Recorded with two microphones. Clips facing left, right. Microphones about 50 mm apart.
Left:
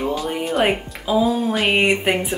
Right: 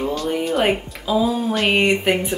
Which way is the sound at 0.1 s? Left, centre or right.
Centre.